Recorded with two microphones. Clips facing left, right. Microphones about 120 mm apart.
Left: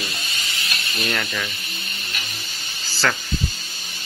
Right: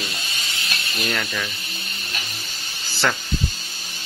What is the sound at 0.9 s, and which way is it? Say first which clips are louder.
Speech: even; centre (ahead or behind).